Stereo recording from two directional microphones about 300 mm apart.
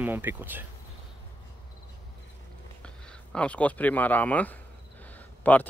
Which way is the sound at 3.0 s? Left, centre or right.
Centre.